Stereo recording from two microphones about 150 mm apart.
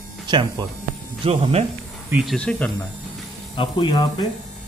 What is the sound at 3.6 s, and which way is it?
Speech, 35° left (ahead or behind).